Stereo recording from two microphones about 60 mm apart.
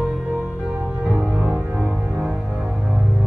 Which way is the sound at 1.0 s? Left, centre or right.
Centre.